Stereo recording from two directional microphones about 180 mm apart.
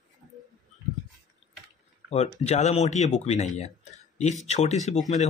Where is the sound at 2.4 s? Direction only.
35° left (ahead or behind).